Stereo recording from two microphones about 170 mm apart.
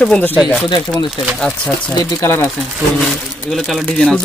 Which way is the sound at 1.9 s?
20° left (ahead or behind).